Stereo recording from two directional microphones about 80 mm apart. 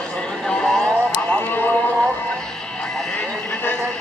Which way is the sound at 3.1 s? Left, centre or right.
Left.